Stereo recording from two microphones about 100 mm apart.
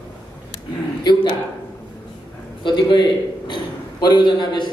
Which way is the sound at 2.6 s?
50° left (ahead or behind).